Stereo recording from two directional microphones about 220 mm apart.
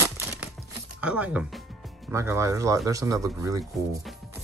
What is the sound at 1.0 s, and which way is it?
Speech, 5° right (ahead or behind).